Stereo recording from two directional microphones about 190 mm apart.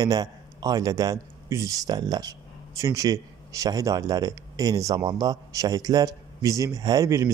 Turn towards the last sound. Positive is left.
turn(degrees=-15)  # may be behind; listen again after turning